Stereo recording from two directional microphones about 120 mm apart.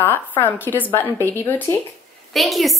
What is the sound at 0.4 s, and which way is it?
Speech, 15° left (ahead or behind).